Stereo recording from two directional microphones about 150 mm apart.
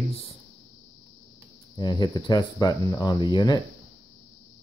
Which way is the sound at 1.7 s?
30° left (ahead or behind).